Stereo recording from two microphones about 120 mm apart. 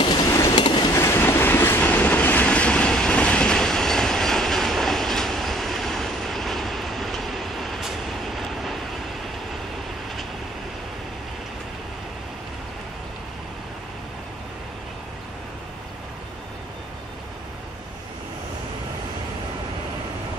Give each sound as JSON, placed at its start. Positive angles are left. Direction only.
{"t": 0.3, "sound": "train", "side_deg": 30}
{"t": 0.9, "sound": "train", "side_deg": 20}